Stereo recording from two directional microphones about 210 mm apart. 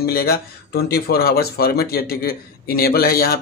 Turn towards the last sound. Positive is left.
turn(degrees=45)  # may be behind; listen again after turning